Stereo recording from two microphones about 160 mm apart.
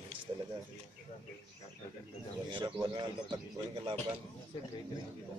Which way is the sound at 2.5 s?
25° right (ahead or behind).